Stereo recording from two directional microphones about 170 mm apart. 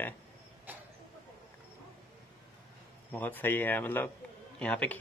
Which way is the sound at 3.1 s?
10° left (ahead or behind).